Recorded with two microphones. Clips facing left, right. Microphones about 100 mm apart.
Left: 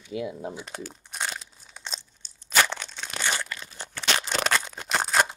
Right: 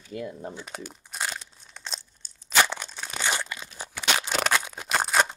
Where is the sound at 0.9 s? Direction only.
Centre (ahead or behind).